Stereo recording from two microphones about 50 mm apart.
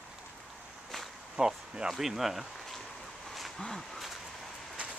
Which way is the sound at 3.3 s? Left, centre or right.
Centre.